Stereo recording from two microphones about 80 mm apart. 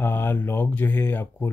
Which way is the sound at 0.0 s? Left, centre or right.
Left.